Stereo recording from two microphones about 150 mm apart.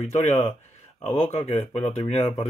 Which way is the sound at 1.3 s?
45° left (ahead or behind).